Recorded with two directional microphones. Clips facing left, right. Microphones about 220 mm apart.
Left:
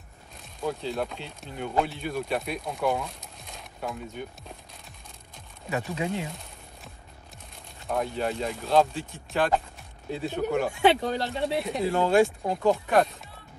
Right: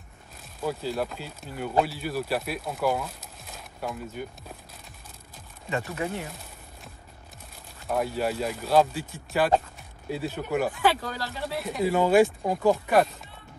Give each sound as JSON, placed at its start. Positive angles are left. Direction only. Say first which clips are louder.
{"t": 0.6, "sound": "speech", "louder": "right 1 dB", "side_deg": -5}
{"t": 5.3, "sound": "music", "louder": "even", "side_deg": 0}
{"t": 5.9, "sound": "speech", "louder": "left 1 dB", "side_deg": 15}
{"t": 7.8, "sound": "speech", "louder": "right 1 dB", "side_deg": -5}
{"t": 11.0, "sound": "speech", "louder": "left 6 dB", "side_deg": 25}
{"t": 11.5, "sound": "speech", "louder": "right 3 dB", "side_deg": 0}